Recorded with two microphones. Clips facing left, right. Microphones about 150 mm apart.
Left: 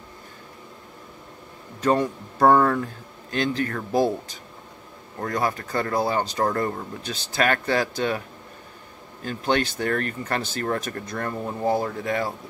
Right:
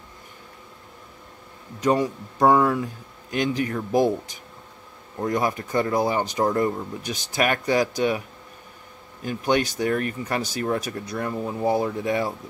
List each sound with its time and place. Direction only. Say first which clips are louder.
1.8 s speech: even; 10° right (ahead or behind)
9.2 s speech: right 1 dB; 15° right (ahead or behind)